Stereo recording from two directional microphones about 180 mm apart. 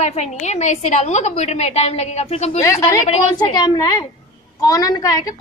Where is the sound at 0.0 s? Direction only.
40° left (ahead or behind).